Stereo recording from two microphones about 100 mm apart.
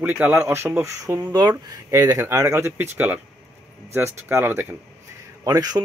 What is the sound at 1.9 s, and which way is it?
Speech, 25° right (ahead or behind).